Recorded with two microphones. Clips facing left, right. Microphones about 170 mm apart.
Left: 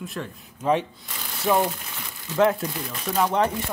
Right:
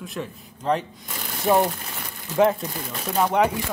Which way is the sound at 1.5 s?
40° right (ahead or behind).